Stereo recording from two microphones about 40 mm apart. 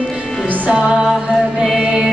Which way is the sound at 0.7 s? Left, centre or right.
Right.